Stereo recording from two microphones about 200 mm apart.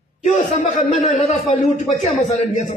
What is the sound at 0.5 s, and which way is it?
A man's voice, 35° left (ahead or behind).